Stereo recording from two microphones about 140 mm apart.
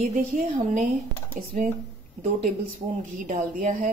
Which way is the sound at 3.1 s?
70° right (ahead or behind).